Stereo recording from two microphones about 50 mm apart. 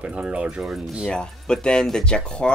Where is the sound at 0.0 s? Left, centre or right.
Centre.